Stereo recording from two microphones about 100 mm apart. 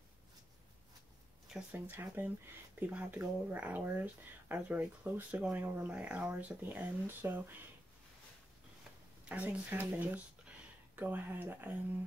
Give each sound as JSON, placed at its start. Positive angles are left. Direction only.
{"t": 1.7, "sound": "speech", "side_deg": -20}
{"t": 9.2, "sound": "speech", "side_deg": -15}